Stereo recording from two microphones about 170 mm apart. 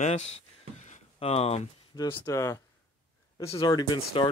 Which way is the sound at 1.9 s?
25° left (ahead or behind).